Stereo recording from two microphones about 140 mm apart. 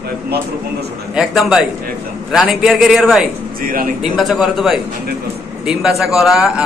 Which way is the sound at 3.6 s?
90° right.